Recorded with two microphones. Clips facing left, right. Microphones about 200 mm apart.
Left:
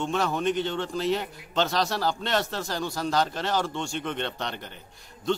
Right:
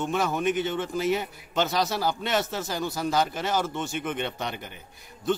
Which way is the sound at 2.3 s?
5° right (ahead or behind).